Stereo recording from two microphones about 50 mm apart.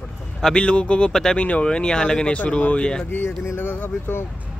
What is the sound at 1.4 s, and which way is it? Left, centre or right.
Speech, left.